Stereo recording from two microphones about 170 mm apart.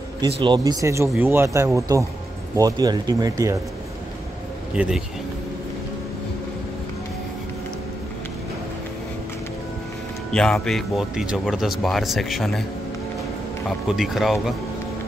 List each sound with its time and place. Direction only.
0.2 s speech: 25° right (ahead or behind)
4.7 s speech: 5° right (ahead or behind)
10.3 s speech: 5° left (ahead or behind)
13.7 s speech: centre (ahead or behind)